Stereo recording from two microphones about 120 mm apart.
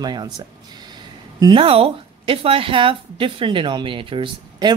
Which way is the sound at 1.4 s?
50° right (ahead or behind).